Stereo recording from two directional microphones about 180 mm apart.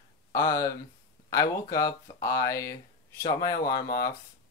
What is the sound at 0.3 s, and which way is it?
Speech, 15° left (ahead or behind).